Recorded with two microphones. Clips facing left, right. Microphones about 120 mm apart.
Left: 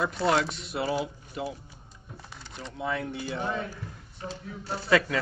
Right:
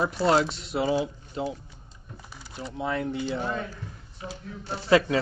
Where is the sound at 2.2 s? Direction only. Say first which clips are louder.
Right 4 dB; 5° right (ahead or behind).